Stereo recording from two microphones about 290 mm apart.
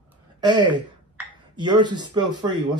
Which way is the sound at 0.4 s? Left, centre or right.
Centre.